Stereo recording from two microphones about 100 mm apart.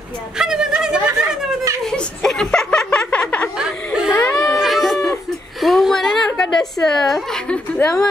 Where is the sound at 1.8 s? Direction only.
5° left (ahead or behind).